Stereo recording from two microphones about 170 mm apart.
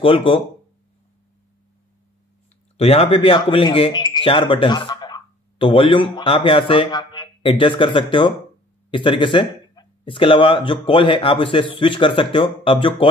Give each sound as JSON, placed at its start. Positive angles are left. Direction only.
{"t": 0.0, "sound": "speech", "side_deg": 30}
{"t": 2.8, "sound": "speech", "side_deg": 35}